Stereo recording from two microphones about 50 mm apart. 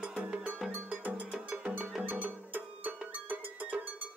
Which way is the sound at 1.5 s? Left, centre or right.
Right.